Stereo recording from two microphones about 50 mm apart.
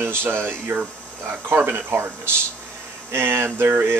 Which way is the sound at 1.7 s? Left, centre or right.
Right.